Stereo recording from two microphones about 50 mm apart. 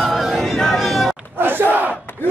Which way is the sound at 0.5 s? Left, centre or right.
Centre.